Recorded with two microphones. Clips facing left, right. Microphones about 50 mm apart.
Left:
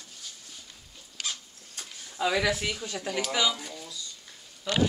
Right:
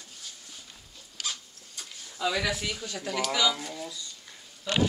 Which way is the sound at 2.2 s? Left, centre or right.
Centre.